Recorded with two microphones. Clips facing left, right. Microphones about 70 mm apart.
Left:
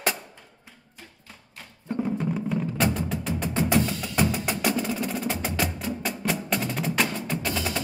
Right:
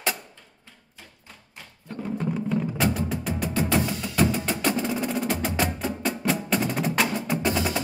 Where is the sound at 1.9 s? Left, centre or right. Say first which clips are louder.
Left 7 dB; left.